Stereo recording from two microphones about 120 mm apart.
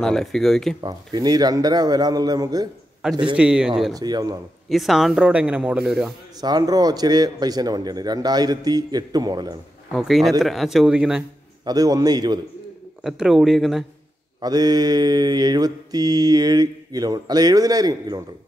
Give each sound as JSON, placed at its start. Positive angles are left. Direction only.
{"t": 0.0, "sound": "speech", "side_deg": 5}
{"t": 0.7, "sound": "mantra", "side_deg": -35}
{"t": 3.0, "sound": "a man's voice", "side_deg": -5}
{"t": 3.9, "sound": "mantra", "side_deg": -35}
{"t": 4.6, "sound": "a man's voice", "side_deg": 0}
{"t": 6.4, "sound": "mantra", "side_deg": -35}
{"t": 9.9, "sound": "speech", "side_deg": 0}
{"t": 11.6, "sound": "mantra", "side_deg": -30}
{"t": 13.0, "sound": "speech", "side_deg": -5}
{"t": 14.4, "sound": "mantra", "side_deg": -35}